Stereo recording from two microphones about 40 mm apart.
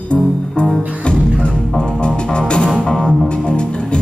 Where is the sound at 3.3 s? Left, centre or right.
Left.